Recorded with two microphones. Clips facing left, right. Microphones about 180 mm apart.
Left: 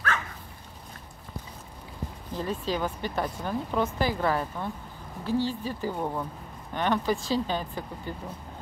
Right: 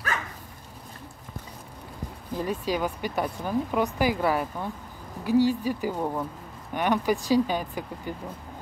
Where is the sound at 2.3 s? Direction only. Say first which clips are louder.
Right 2 dB; 15° right (ahead or behind).